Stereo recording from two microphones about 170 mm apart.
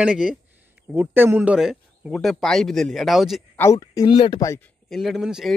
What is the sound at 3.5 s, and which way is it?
Speech, 15° left (ahead or behind).